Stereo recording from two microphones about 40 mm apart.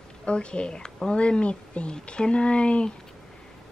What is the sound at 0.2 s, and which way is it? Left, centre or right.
Speech, left.